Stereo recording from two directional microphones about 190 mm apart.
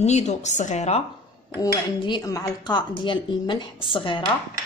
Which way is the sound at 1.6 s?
20° left (ahead or behind).